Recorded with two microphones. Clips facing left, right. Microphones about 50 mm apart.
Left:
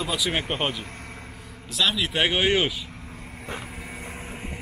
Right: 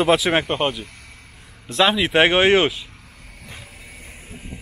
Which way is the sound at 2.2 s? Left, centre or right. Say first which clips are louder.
Right 5 dB; centre.